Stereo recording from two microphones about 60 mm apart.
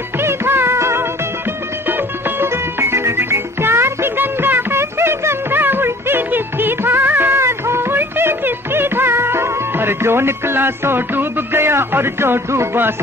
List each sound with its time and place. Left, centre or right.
0.2 s music: right
1.9 s music: right